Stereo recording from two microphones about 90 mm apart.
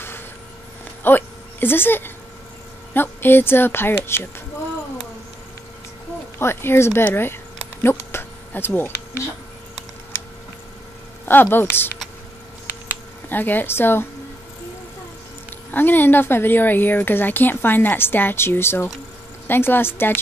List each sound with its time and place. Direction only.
1.0 s speech: 25° left (ahead or behind)
6.3 s speech: 25° left (ahead or behind)
7.8 s a sound: 25° left (ahead or behind)
11.2 s speech: 25° left (ahead or behind)
13.3 s speech: 20° left (ahead or behind)
15.7 s speech: 20° left (ahead or behind)